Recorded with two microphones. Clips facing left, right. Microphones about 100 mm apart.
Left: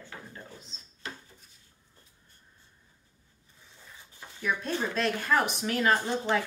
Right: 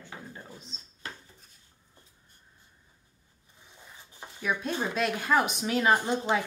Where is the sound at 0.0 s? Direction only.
15° right (ahead or behind).